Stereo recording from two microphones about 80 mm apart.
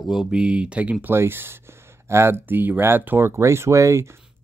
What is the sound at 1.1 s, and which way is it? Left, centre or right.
Speech, right.